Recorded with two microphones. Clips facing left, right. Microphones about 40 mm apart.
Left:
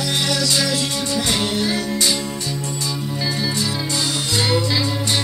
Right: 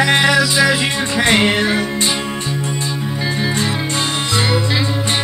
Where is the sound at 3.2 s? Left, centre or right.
Right.